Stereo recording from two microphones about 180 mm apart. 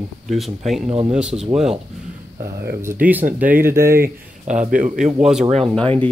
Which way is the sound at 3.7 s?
55° right (ahead or behind).